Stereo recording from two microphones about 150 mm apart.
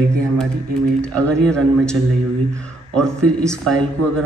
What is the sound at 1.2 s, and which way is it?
Speech, 5° left (ahead or behind).